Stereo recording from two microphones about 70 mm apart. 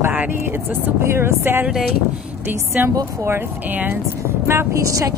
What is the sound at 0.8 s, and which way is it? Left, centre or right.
Speech, right.